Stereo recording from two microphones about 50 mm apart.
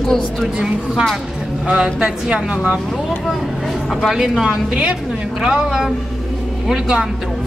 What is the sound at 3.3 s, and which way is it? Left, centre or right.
Speech, centre.